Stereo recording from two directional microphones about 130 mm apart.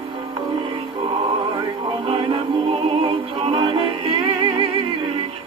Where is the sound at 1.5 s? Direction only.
40° right (ahead or behind).